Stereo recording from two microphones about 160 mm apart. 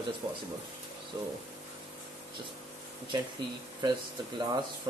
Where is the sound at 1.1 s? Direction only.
20° right (ahead or behind).